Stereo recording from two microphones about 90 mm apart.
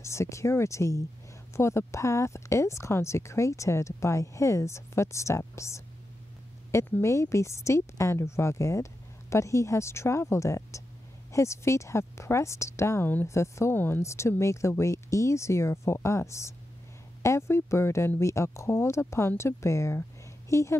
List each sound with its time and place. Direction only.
0.0 s speech: 30° left (ahead or behind)